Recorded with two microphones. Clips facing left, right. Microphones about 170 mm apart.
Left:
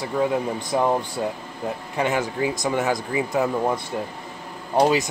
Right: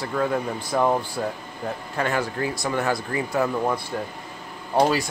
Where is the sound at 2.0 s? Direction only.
15° left (ahead or behind).